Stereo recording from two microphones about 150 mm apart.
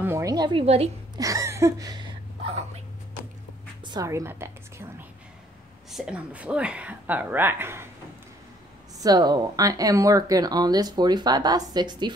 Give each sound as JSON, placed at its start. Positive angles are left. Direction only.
{"t": 0.0, "sound": "a sound", "side_deg": -20}
{"t": 1.1, "sound": "sneeze", "side_deg": -20}
{"t": 3.8, "sound": "a woman's voice", "side_deg": -25}
{"t": 5.9, "sound": "speech", "side_deg": -5}
{"t": 9.0, "sound": "speech", "side_deg": -25}